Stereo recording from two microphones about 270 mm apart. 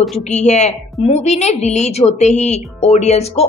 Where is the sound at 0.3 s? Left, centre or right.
Left.